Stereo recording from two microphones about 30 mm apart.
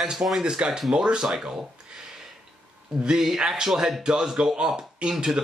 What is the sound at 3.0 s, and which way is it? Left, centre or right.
Speech, right.